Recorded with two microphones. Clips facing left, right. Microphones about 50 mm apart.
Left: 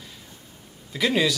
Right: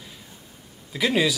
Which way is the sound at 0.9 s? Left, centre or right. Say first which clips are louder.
Even; centre.